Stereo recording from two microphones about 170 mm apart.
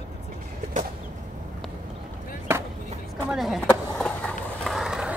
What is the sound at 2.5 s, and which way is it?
Skateboard, 15° right (ahead or behind).